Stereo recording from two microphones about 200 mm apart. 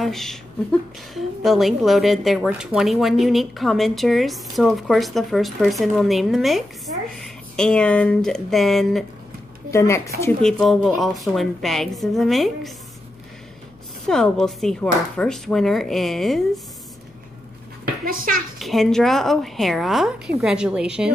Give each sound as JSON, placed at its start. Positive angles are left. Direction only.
{"t": 0.0, "sound": "a woman's voice", "side_deg": 0}
{"t": 9.7, "sound": "a woman's voice", "side_deg": 15}
{"t": 10.4, "sound": "a woman's voice", "side_deg": 0}
{"t": 14.0, "sound": "a woman's voice", "side_deg": 0}
{"t": 18.0, "sound": "a child's voice", "side_deg": -45}
{"t": 18.6, "sound": "a woman's voice", "side_deg": 0}